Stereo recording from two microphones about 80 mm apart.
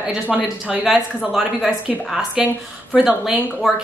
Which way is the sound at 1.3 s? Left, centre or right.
Centre.